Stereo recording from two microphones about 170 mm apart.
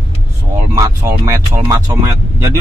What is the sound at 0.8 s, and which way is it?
Speech, 15° right (ahead or behind).